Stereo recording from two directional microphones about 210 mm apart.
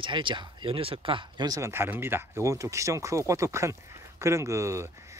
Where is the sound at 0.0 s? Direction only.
25° right (ahead or behind).